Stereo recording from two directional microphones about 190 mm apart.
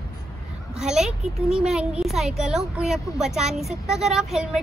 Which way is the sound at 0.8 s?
Centre (ahead or behind).